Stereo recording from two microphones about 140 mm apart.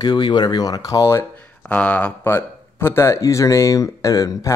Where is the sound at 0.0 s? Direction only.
30° left (ahead or behind).